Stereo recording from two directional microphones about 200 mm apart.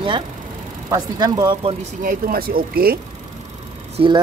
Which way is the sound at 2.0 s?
45° right (ahead or behind).